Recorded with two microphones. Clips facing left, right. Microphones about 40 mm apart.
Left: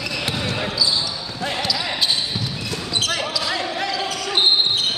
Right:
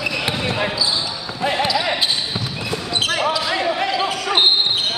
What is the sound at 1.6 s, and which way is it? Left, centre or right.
Basketball bounce, right.